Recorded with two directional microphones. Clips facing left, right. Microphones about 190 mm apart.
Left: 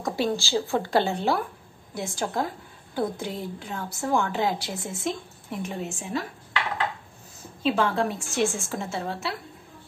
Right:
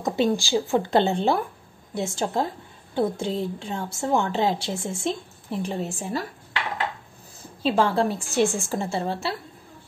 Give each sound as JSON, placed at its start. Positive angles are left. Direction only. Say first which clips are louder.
{"t": 0.0, "sound": "a woman's voice", "louder": "right 4 dB", "side_deg": -20}
{"t": 7.6, "sound": "a woman's voice", "louder": "right 2 dB", "side_deg": -35}